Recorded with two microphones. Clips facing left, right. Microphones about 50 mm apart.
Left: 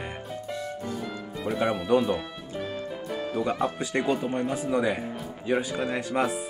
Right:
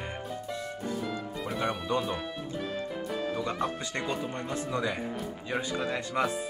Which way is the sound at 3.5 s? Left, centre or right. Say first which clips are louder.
Left 5 dB; centre.